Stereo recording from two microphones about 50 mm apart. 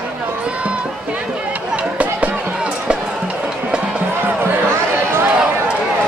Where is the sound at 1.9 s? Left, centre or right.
Right.